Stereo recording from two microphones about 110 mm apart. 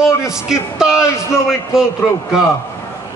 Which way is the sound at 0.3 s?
5° right (ahead or behind).